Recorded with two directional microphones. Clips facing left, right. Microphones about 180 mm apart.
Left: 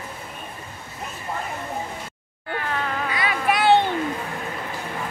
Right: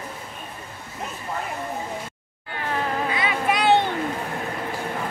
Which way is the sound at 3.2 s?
20° right (ahead or behind).